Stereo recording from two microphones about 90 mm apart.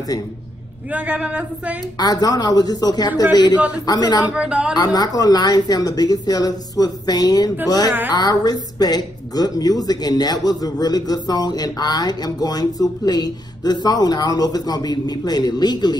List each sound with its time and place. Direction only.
0.9 s speech: 15° right (ahead or behind)
2.0 s speech: 45° left (ahead or behind)
4.2 s speech: 10° right (ahead or behind)
4.7 s speech: 45° left (ahead or behind)